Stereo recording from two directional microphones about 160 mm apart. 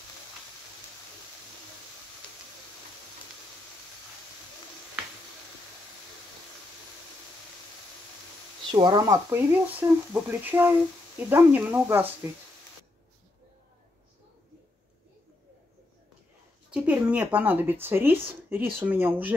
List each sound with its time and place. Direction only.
8.7 s speech: 25° right (ahead or behind)
16.7 s speech: 5° right (ahead or behind)